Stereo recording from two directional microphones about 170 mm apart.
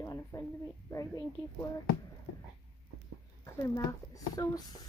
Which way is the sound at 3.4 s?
20° left (ahead or behind).